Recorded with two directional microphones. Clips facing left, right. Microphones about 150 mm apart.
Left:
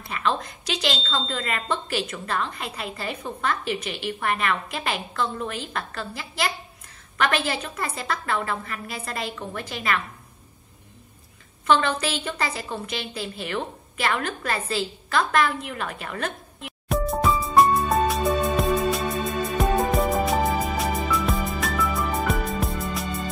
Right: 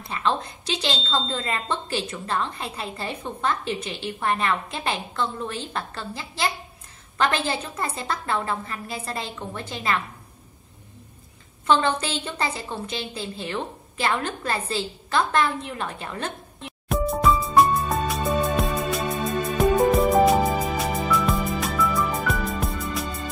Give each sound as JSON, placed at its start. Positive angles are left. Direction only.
{"t": 0.1, "sound": "a woman's voice", "side_deg": -30}
{"t": 11.6, "sound": "a woman's voice", "side_deg": -30}
{"t": 16.9, "sound": "music", "side_deg": 0}